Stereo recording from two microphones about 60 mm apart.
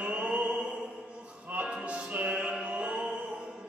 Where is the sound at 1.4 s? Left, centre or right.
Right.